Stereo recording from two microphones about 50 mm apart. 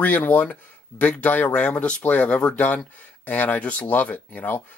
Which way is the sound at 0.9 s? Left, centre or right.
Left.